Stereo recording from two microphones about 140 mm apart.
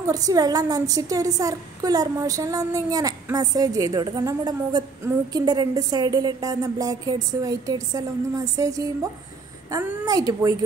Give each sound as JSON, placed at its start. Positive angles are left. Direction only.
{"t": 0.0, "sound": "a woman's voice", "side_deg": -25}